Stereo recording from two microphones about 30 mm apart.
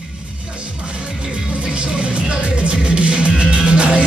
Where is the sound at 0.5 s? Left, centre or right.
Right.